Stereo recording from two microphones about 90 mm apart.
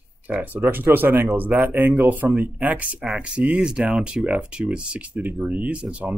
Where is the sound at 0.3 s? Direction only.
20° right (ahead or behind).